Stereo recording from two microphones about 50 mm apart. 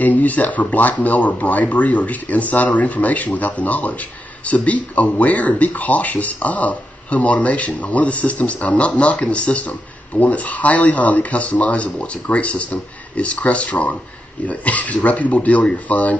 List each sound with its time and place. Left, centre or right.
0.0 s speech: left